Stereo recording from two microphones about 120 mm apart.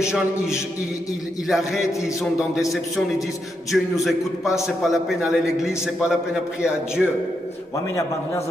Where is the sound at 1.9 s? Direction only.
25° left (ahead or behind).